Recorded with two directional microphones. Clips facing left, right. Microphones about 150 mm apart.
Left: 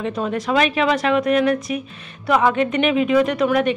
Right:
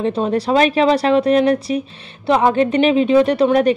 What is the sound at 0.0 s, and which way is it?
A woman's voice, 30° right (ahead or behind).